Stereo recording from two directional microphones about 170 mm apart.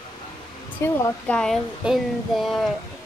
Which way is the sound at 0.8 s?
10° left (ahead or behind).